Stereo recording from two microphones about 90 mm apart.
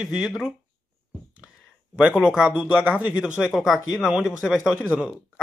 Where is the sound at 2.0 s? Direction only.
10° right (ahead or behind).